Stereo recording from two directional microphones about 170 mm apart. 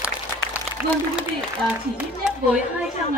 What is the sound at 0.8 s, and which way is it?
Speech, 10° right (ahead or behind).